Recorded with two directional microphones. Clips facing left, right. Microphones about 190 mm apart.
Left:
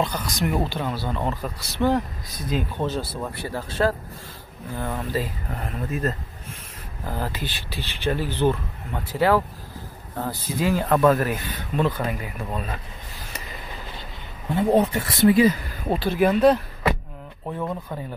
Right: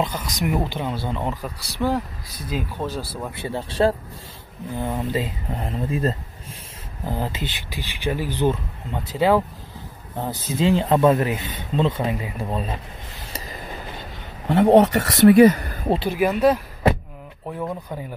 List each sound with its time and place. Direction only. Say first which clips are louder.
0.7 s speech: right 1 dB; 20° right (ahead or behind)
3.4 s speech: right 3 dB; 30° right (ahead or behind)
4.7 s speech: right 2 dB; 20° right (ahead or behind)
14.5 s speech: right 5 dB; 80° right; by 15.9 s 55° right (ahead or behind)
16.1 s speech: left 2 dB; 5° right (ahead or behind)